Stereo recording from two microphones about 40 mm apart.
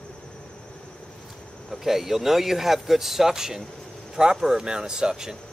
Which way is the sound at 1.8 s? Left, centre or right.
Centre.